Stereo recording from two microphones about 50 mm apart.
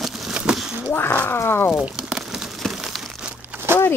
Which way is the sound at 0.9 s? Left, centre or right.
Left.